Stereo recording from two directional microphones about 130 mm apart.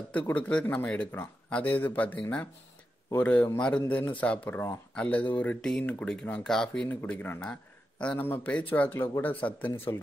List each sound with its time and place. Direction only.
0.1 s speech: 10° left (ahead or behind)
9.9 s speech: 25° left (ahead or behind)